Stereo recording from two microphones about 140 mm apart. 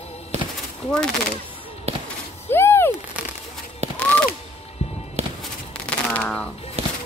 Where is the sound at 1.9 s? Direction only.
50° right (ahead or behind).